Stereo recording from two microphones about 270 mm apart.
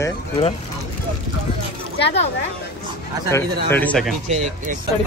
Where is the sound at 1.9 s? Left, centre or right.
Left.